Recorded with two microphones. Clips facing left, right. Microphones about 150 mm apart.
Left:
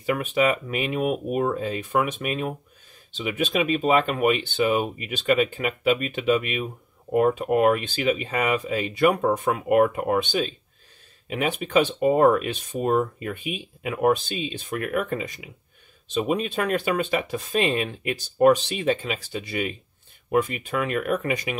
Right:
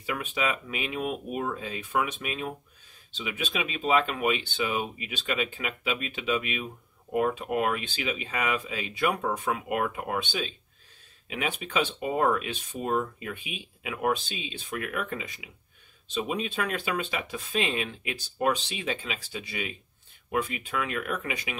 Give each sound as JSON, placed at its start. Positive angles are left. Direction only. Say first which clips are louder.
{"t": 0.0, "sound": "speech", "louder": "left 8 dB", "side_deg": 45}